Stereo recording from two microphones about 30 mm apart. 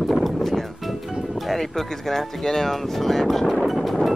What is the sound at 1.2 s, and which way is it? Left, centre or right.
Speech, centre.